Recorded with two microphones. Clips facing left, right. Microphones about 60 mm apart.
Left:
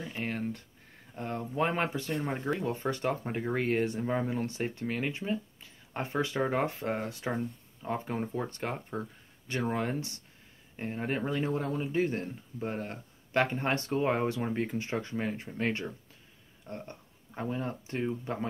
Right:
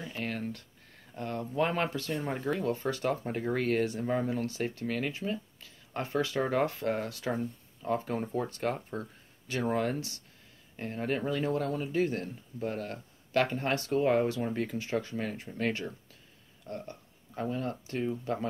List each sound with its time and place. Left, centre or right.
0.2 s a sound: left
1.1 s speech: centre
8.5 s speech: left
9.8 s speech: left
10.8 s speech: centre